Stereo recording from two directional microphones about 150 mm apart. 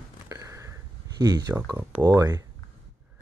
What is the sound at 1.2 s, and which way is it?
Speech, 25° right (ahead or behind).